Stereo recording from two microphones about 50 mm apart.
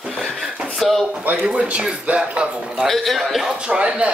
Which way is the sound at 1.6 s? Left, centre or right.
Right.